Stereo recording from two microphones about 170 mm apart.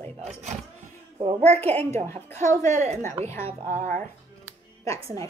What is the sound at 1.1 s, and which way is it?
Speech, 35° right (ahead or behind).